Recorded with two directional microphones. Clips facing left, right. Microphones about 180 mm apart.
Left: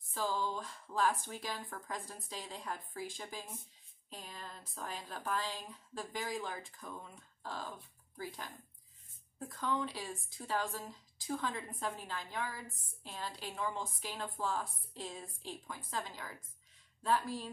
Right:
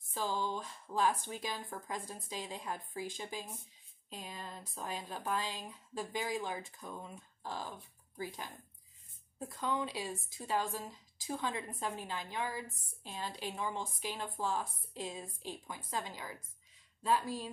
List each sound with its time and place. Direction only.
0.1 s a woman's voice: 15° right (ahead or behind)
9.4 s a woman's voice: 20° right (ahead or behind)